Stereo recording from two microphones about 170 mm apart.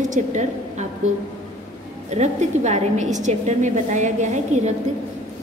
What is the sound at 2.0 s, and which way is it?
A woman's voice, 40° right (ahead or behind).